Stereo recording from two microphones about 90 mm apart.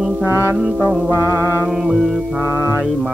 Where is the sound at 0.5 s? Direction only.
5° right (ahead or behind).